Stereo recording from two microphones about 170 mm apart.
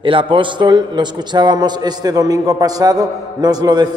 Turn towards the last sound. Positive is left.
turn(degrees=-25)  # may be behind; listen again after turning